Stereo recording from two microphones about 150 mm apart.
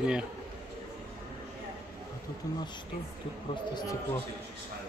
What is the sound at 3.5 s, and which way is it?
Speech, 30° left (ahead or behind).